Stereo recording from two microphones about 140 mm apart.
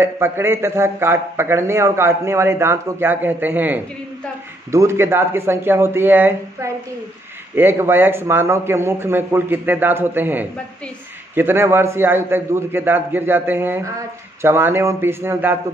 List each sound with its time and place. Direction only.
0.0 s a man's voice: 15° right (ahead or behind)